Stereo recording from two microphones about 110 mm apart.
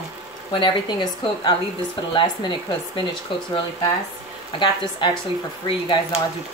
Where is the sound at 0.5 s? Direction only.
50° left (ahead or behind).